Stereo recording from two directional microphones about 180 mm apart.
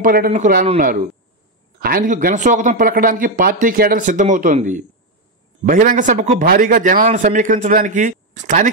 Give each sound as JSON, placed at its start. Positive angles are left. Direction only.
{"t": 0.0, "sound": "speech", "side_deg": -50}